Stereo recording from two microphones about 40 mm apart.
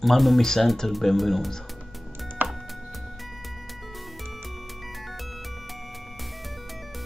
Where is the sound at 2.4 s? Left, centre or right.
Right.